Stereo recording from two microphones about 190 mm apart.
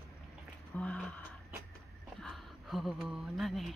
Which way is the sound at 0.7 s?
5° left (ahead or behind).